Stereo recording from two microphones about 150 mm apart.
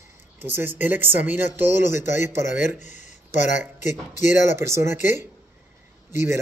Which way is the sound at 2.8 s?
50° left (ahead or behind).